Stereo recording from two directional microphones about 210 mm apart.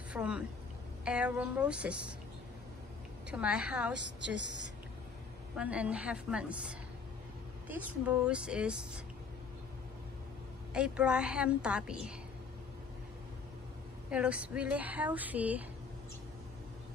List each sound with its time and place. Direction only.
0.1 s a woman's voice: 5° right (ahead or behind)
3.3 s a woman's voice: 5° right (ahead or behind)
5.6 s a woman's voice: 5° right (ahead or behind)
10.7 s a woman's voice: 5° right (ahead or behind)
14.1 s speech: 5° right (ahead or behind)